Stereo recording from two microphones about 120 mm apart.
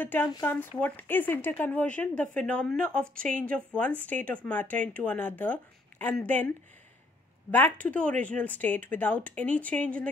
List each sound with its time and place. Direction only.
0.0 s speech: 15° left (ahead or behind)
7.5 s speech: 15° left (ahead or behind)